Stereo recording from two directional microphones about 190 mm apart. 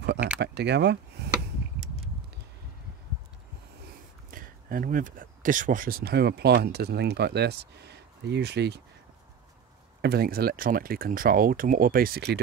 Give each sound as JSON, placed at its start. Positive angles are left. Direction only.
{"t": 0.0, "sound": "a sound", "side_deg": -60}
{"t": 0.4, "sound": "speech", "side_deg": -65}
{"t": 4.3, "sound": "speech", "side_deg": -45}
{"t": 10.0, "sound": "speech", "side_deg": -55}